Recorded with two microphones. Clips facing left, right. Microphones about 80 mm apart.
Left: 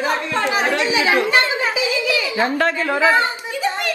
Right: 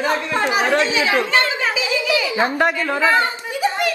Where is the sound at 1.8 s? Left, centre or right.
Right.